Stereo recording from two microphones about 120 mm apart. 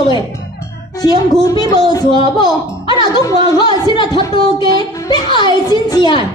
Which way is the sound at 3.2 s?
35° left (ahead or behind).